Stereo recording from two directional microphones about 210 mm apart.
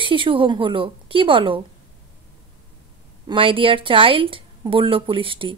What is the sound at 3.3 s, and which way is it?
Speech, 25° right (ahead or behind).